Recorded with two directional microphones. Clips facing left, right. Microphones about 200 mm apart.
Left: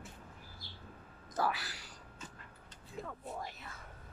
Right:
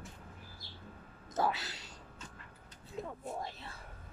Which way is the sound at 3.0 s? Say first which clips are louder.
Right 3 dB; 25° right (ahead or behind).